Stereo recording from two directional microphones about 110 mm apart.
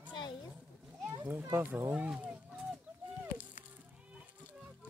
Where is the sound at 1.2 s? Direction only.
20° right (ahead or behind).